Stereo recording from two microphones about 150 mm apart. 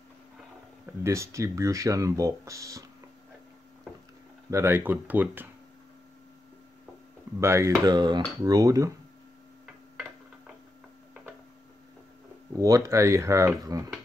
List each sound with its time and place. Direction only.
1.0 s speech: 20° right (ahead or behind)
4.5 s speech: 20° right (ahead or behind)
7.3 s speech: 20° right (ahead or behind)
12.5 s speech: 20° right (ahead or behind)